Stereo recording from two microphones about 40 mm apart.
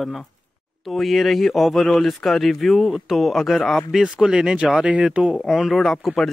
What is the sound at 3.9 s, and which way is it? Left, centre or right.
Speech, centre.